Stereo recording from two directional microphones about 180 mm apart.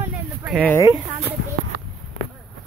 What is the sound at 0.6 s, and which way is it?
Speech, 15° left (ahead or behind).